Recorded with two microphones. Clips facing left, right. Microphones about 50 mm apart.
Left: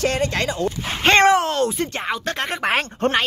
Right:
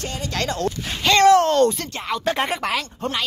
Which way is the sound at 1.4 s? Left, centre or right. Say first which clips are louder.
Right 4 dB; centre.